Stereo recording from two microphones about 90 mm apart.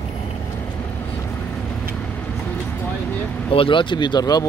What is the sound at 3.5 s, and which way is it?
Speech, 70° left (ahead or behind).